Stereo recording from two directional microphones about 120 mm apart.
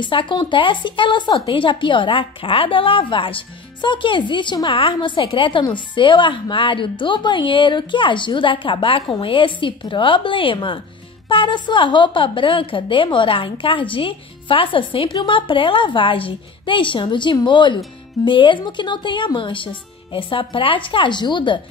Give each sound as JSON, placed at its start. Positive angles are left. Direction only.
{"t": 0.0, "sound": "a woman's voice", "side_deg": 45}